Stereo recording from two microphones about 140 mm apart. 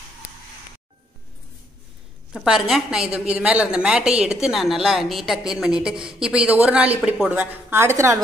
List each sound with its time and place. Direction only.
2.3 s a woman's voice: centre (ahead or behind); by 8.2 s 20° right (ahead or behind)